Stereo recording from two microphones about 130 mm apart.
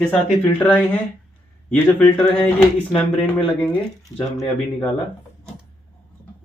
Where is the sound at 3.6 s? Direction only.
10° left (ahead or behind).